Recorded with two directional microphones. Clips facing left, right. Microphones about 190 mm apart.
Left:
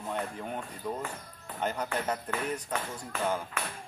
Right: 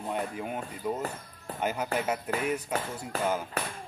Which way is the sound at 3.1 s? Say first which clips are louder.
Right 2 dB; 35° right (ahead or behind).